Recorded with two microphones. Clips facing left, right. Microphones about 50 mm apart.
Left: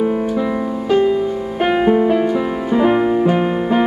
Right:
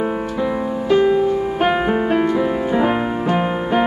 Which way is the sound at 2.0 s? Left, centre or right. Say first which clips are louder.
Left 2 dB; centre.